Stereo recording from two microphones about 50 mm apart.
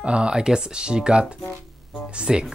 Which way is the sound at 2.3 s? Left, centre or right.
Centre.